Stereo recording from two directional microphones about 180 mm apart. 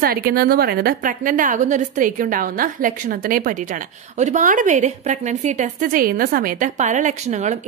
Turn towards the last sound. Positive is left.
turn(degrees=-40)  # may be behind; listen again after turning